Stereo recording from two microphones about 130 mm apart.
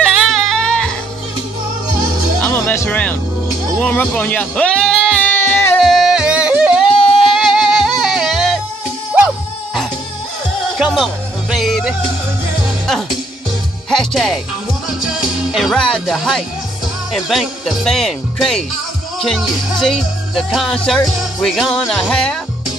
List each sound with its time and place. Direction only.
0.1 s music: centre (ahead or behind)
2.5 s speech: 20° left (ahead or behind)
5.4 s music: 20° left (ahead or behind)
5.8 s music: centre (ahead or behind)
10.8 s music: centre (ahead or behind)
13.8 s speech: centre (ahead or behind)
14.9 s music: 5° right (ahead or behind)
17.1 s speech: centre (ahead or behind)